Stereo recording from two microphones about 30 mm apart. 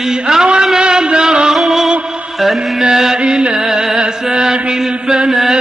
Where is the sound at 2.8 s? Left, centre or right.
Centre.